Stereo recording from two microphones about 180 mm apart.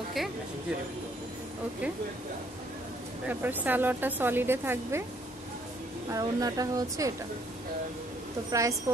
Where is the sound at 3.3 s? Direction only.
10° right (ahead or behind).